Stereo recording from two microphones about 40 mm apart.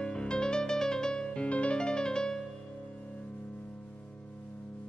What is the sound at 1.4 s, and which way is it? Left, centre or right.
Music, left.